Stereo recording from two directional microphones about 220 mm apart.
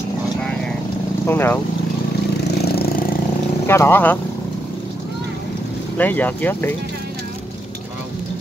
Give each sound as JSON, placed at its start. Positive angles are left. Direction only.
{"t": 1.2, "sound": "speech", "side_deg": 10}
{"t": 2.6, "sound": "a sound", "side_deg": 45}
{"t": 3.6, "sound": "speech", "side_deg": 10}
{"t": 5.9, "sound": "speech", "side_deg": 5}